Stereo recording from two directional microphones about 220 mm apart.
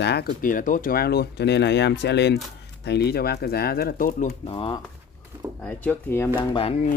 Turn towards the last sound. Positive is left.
turn(degrees=25)  # may be behind; listen again after turning